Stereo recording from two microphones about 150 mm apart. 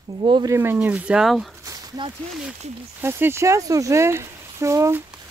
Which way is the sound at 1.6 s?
25° right (ahead or behind).